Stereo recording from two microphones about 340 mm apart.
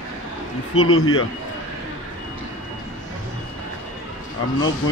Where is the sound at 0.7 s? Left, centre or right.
Left.